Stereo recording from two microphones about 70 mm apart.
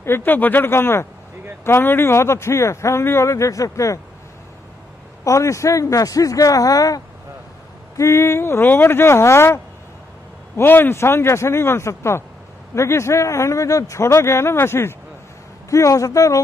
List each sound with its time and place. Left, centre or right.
0.0 s speech: left
5.2 s speech: left
8.0 s a man's voice: left
15.7 s a man's voice: left